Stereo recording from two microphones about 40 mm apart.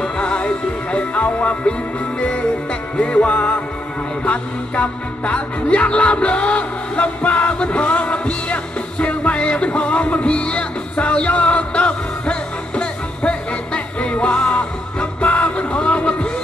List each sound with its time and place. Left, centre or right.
0.0 s music: left